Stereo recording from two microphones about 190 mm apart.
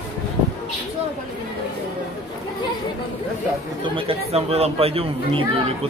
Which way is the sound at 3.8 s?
30° right (ahead or behind).